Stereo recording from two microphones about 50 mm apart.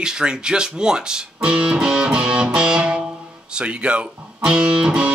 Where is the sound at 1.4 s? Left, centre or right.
Right.